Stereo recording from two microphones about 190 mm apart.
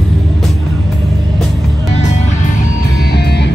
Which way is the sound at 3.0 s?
60° left (ahead or behind).